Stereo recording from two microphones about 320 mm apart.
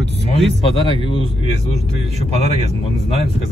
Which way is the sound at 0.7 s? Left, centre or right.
Centre.